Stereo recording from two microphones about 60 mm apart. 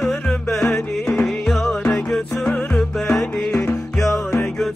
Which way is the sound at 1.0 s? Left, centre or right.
Left.